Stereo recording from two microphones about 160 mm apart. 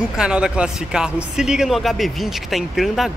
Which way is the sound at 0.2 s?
5° right (ahead or behind).